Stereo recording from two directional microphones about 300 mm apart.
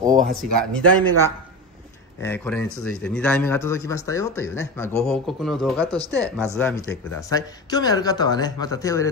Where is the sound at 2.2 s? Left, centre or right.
Centre.